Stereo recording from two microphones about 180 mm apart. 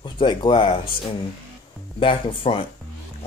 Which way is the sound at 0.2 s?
25° left (ahead or behind).